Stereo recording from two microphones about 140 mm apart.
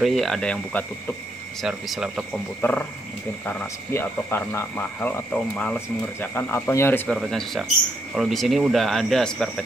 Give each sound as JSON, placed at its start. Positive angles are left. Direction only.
{"t": 0.0, "sound": "speech", "side_deg": 0}
{"t": 2.6, "sound": "speech", "side_deg": 10}
{"t": 7.1, "sound": "speech", "side_deg": 5}